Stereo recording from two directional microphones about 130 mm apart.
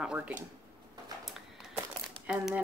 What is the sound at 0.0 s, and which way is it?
Speech, 10° right (ahead or behind).